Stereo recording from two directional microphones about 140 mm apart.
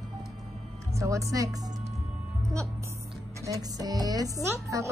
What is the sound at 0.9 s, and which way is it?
Speech, 20° right (ahead or behind).